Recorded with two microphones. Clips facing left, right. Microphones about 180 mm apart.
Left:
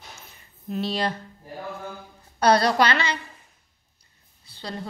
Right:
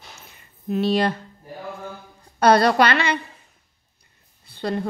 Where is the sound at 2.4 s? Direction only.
55° right (ahead or behind).